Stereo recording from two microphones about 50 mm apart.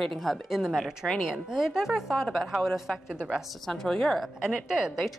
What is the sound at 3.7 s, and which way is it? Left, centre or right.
Speech, centre.